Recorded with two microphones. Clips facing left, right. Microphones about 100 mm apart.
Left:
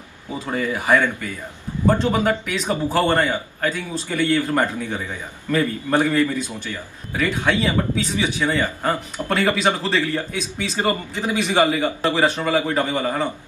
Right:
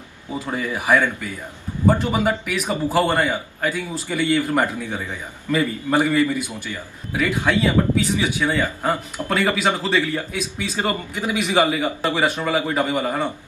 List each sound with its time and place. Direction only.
0.5 s a man's voice: 10° right (ahead or behind)